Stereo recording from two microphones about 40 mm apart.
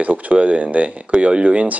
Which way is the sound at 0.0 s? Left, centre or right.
Right.